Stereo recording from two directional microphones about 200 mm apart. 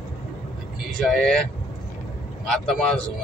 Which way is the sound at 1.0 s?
Centre (ahead or behind).